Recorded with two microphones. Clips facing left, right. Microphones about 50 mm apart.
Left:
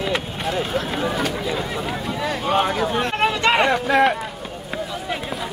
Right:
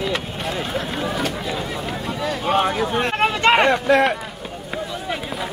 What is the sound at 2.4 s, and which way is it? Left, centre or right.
Speech, centre.